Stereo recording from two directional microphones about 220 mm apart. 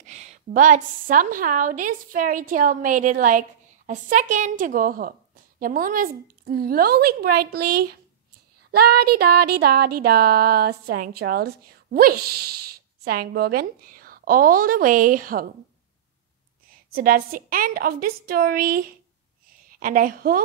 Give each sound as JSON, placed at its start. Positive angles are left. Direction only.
{"t": 0.0, "sound": "a woman's voice", "side_deg": -30}
{"t": 5.6, "sound": "a sound", "side_deg": -40}
{"t": 13.0, "sound": "a woman's voice", "side_deg": -45}
{"t": 16.9, "sound": "a woman's voice", "side_deg": -40}